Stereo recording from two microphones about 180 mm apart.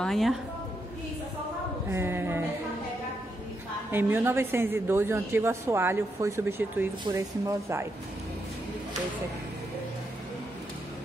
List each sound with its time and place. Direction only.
0.0 s speech: centre (ahead or behind)
1.9 s a woman's voice: 15° right (ahead or behind)
3.9 s a woman's voice: 10° right (ahead or behind)